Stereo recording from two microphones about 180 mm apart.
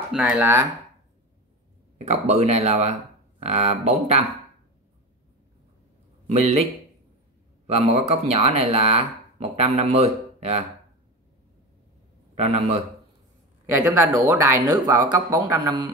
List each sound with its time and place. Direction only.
0.1 s speech: 5° right (ahead or behind)
0.4 s speech: 15° right (ahead or behind)
2.0 s speech: 40° right (ahead or behind)
6.3 s speech: 40° right (ahead or behind)
7.6 s speech: 35° right (ahead or behind)
12.4 s speech: 40° right (ahead or behind)
14.2 s a man's voice: 15° right (ahead or behind)